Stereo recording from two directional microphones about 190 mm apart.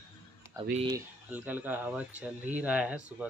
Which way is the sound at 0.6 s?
20° right (ahead or behind).